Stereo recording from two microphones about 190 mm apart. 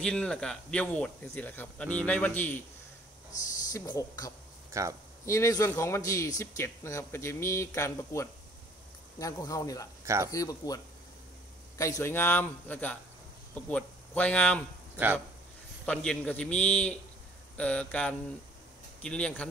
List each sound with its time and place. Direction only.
0.0 s a man's voice: 5° left (ahead or behind)
3.7 s speech: 20° left (ahead or behind)
4.6 s speech: 15° right (ahead or behind)
5.2 s a man's voice: 15° left (ahead or behind)
10.0 s speech: 15° right (ahead or behind)
10.3 s speech: 20° left (ahead or behind)
11.8 s a man's voice: 15° left (ahead or behind)
15.8 s a man's voice: 5° left (ahead or behind)